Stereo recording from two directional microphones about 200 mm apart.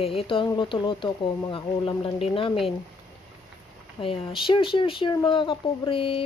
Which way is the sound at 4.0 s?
20° left (ahead or behind).